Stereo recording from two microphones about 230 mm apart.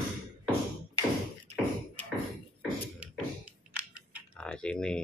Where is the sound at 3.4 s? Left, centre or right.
Centre.